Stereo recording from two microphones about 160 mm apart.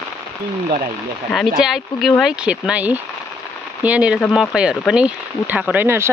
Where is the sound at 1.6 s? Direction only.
Centre (ahead or behind).